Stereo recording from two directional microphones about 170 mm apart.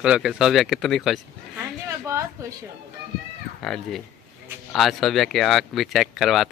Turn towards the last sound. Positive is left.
turn(degrees=0)  # may be behind; listen again after turning